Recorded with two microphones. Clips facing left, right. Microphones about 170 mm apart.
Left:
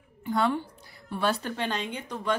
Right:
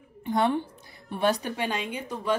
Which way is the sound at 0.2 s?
20° right (ahead or behind).